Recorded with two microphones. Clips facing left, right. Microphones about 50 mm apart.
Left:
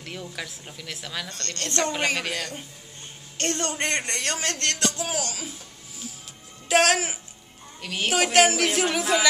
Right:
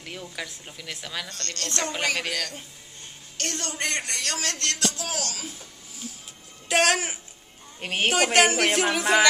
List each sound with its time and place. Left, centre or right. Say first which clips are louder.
0.0 s a woman's voice: left 1 dB; centre
1.4 s speech: left 4 dB; left
2.1 s a woman's voice: even; centre
3.3 s speech: left 4 dB; left
5.0 s speech: left 2 dB; centre
6.7 s a woman's voice: left 2 dB; centre
7.8 s a woman's voice: right 3 dB; right
8.1 s a woman's voice: left 1 dB; centre